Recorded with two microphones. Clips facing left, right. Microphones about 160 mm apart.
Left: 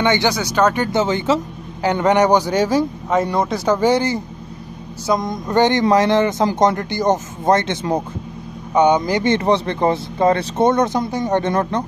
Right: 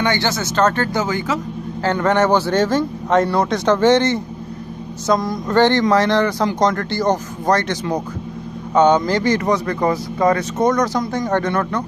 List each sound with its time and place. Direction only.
0.0 s speech: 15° left (ahead or behind)
0.9 s speech: 25° left (ahead or behind)
9.3 s speech: 30° left (ahead or behind)